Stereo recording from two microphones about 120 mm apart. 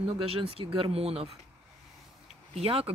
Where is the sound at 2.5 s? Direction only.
55° right (ahead or behind).